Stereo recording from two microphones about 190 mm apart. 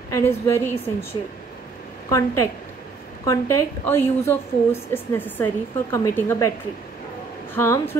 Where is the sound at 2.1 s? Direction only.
15° left (ahead or behind).